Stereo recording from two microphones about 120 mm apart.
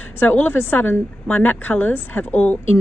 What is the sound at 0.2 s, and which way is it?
A woman's voice, 15° left (ahead or behind).